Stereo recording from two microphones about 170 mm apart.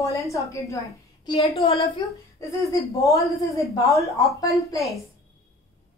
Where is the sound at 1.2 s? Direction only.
35° left (ahead or behind).